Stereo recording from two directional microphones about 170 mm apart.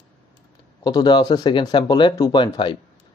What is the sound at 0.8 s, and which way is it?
Speech, 25° left (ahead or behind).